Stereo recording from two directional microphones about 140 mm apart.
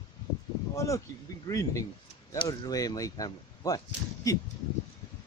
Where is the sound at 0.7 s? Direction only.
25° left (ahead or behind).